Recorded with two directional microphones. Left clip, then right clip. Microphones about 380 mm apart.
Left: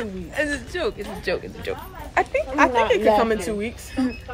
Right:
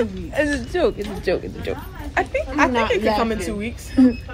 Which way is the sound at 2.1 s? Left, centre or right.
Left.